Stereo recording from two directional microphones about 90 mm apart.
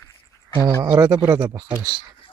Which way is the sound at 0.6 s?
30° right (ahead or behind).